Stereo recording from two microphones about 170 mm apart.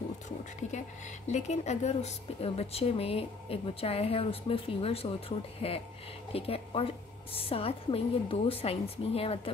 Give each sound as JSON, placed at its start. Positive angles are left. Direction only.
{"t": 1.3, "sound": "speech", "side_deg": 40}